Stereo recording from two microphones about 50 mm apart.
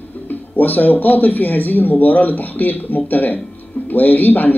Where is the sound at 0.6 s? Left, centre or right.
Left.